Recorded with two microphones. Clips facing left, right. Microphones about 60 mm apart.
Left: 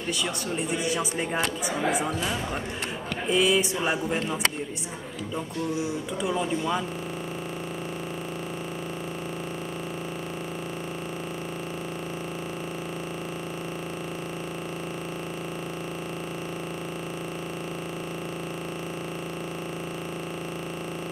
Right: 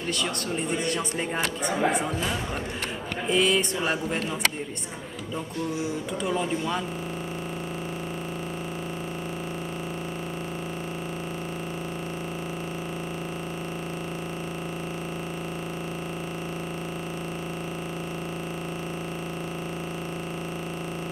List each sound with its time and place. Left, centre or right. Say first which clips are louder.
0.6 s speech: left 1 dB; centre
6.2 s speech: left 1 dB; centre